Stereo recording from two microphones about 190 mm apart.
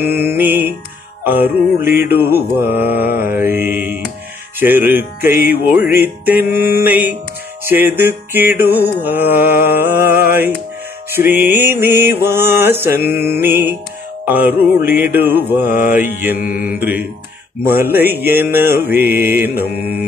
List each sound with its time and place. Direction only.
0.0 s music: 10° right (ahead or behind)
16.3 s mantra: 45° left (ahead or behind)
16.6 s music: 10° right (ahead or behind)
19.7 s mantra: 10° right (ahead or behind)